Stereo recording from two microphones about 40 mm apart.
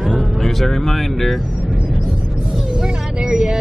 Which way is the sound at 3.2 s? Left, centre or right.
Right.